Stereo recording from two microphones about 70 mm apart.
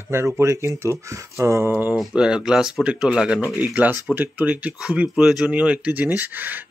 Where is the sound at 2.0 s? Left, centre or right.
Centre.